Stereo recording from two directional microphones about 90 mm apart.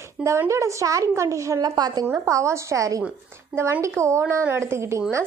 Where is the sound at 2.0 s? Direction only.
30° right (ahead or behind).